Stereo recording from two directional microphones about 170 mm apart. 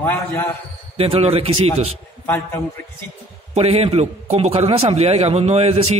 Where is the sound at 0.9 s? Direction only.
35° right (ahead or behind).